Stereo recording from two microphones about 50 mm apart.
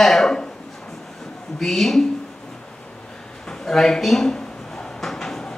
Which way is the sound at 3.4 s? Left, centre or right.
Centre.